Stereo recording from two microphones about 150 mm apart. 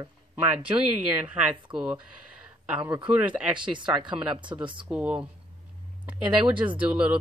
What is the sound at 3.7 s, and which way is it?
Speech, 30° right (ahead or behind).